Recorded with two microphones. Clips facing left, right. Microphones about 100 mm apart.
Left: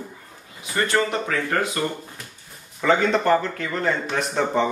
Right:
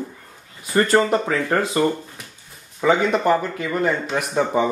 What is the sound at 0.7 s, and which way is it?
Speech, 40° right (ahead or behind).